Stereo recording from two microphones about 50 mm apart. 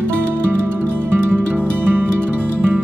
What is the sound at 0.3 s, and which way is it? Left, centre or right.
Music, right.